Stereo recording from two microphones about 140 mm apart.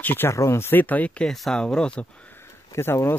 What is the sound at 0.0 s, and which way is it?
Speech, 15° left (ahead or behind).